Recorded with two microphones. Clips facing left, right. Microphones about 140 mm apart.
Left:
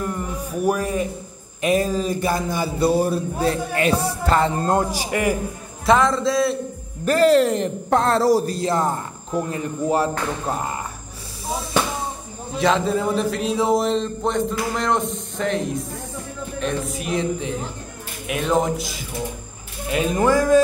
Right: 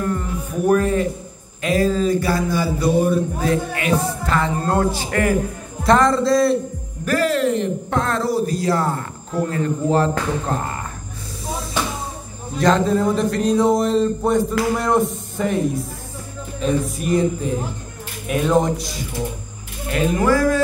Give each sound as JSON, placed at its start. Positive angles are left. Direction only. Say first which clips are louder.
{"t": 0.0, "sound": "music", "louder": "right 3 dB", "side_deg": 10}
{"t": 1.6, "sound": "a sound", "louder": "right 2 dB", "side_deg": 20}
{"t": 3.1, "sound": "speech", "louder": "right 3 dB", "side_deg": 30}
{"t": 4.7, "sound": "speech", "louder": "right 2 dB", "side_deg": 15}
{"t": 5.9, "sound": "speech", "louder": "right 2 dB", "side_deg": 0}
{"t": 7.1, "sound": "speech", "louder": "left 3 dB", "side_deg": 30}
{"t": 8.5, "sound": "speech", "louder": "right 1 dB", "side_deg": 20}
{"t": 12.5, "sound": "speech", "louder": "right 3 dB", "side_deg": 0}
{"t": 20.2, "sound": "a sound", "louder": "even", "side_deg": 20}